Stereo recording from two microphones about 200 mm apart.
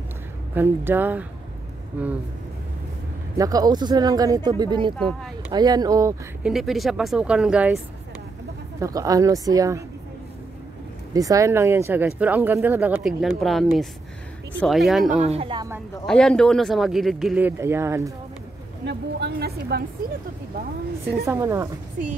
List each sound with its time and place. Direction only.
0.6 s speech: 10° right (ahead or behind)
3.3 s speech: 20° right (ahead or behind)
4.9 s speech: centre (ahead or behind)
5.5 s speech: 20° right (ahead or behind)
6.4 s speech: centre (ahead or behind)
8.7 s speech: 15° right (ahead or behind)
11.1 s speech: 15° right (ahead or behind)
15.2 s speech: 30° right (ahead or behind)
16.1 s speech: 5° left (ahead or behind); by 18.1 s 15° right (ahead or behind)
18.9 s a woman's voice: 60° right (ahead or behind)
21.3 s speech: 15° right (ahead or behind)